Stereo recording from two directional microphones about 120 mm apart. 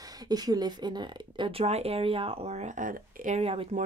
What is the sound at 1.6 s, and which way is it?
Speech, 60° right (ahead or behind).